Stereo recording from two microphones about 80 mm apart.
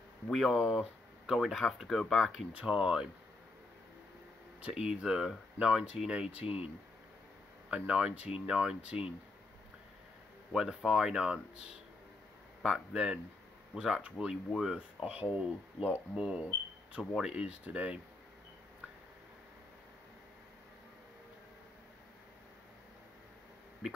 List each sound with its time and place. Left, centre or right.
0.3 s speech: centre
2.5 s speech: centre
4.6 s speech: centre
7.7 s speech: centre
10.5 s speech: centre
12.6 s speech: centre
23.8 s a sound: centre